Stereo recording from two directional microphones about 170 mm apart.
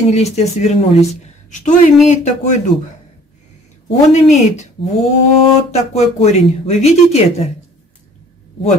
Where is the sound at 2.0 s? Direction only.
45° left (ahead or behind).